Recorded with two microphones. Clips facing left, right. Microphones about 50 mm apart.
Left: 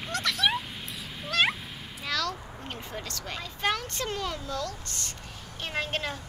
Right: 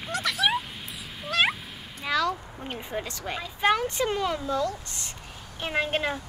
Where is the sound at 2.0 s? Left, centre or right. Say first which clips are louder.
Right 5 dB; centre.